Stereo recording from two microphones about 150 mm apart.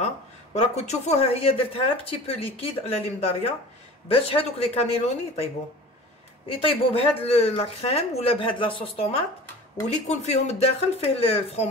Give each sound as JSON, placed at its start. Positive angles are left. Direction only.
{"t": 0.6, "sound": "speech", "side_deg": 45}
{"t": 4.1, "sound": "speech", "side_deg": 40}
{"t": 6.5, "sound": "speech", "side_deg": 35}